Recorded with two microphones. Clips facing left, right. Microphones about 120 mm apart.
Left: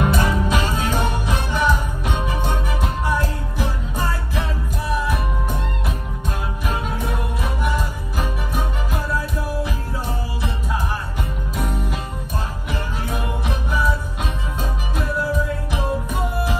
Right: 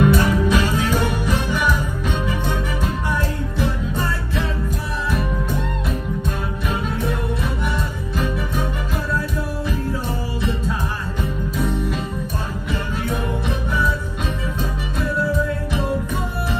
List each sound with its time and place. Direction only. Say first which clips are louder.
0.0 s music: right 4 dB; 15° left (ahead or behind)